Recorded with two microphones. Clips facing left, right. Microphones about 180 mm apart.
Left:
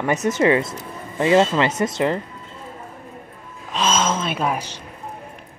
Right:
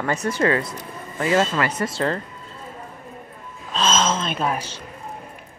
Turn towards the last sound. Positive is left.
turn(degrees=10)  # may be behind; listen again after turning